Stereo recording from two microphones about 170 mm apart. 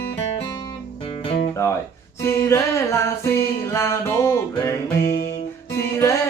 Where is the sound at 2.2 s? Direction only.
15° left (ahead or behind).